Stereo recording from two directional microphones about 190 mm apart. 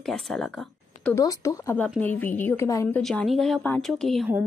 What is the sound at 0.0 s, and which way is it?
Speech, centre (ahead or behind).